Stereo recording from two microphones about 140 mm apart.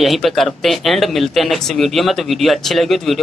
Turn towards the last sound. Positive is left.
turn(degrees=0)  # may be behind; listen again after turning